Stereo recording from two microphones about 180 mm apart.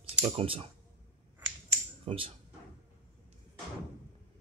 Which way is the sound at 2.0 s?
30° right (ahead or behind).